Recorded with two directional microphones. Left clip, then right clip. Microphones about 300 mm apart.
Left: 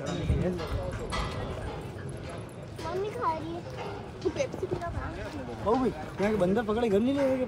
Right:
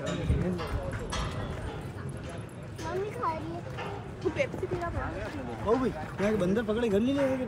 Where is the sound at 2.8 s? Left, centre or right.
Centre.